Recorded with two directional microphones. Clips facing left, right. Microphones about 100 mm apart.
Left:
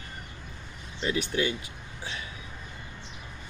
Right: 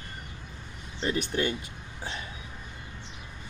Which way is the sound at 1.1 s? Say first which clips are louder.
Even; 40° right (ahead or behind).